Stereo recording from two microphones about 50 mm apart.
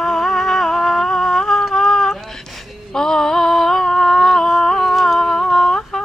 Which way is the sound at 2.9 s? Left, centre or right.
Centre.